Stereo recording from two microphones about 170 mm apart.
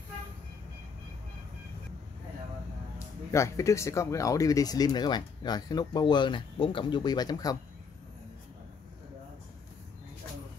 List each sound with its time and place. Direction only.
3.3 s speech: 15° left (ahead or behind)